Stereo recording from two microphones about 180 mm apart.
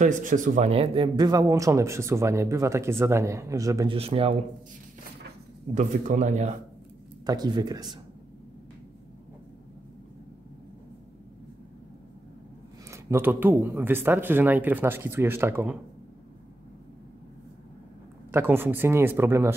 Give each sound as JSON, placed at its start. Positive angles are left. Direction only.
{"t": 0.0, "sound": "speech", "side_deg": -45}
{"t": 3.9, "sound": "speech", "side_deg": -30}
{"t": 5.8, "sound": "a man's voice", "side_deg": -45}
{"t": 7.2, "sound": "speech", "side_deg": -20}
{"t": 12.9, "sound": "speech", "side_deg": -15}
{"t": 18.3, "sound": "speech", "side_deg": -10}